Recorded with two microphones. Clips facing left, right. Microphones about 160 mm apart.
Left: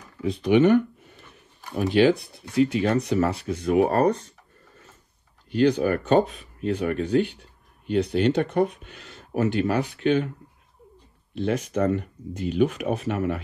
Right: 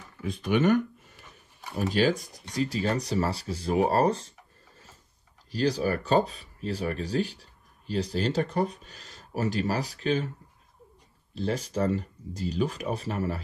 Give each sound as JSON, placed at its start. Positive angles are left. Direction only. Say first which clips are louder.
{"t": 1.9, "sound": "speech", "louder": "left 6 dB", "side_deg": -40}
{"t": 5.5, "sound": "speech", "louder": "left 6 dB", "side_deg": -35}
{"t": 11.3, "sound": "speech", "louder": "left 4 dB", "side_deg": -35}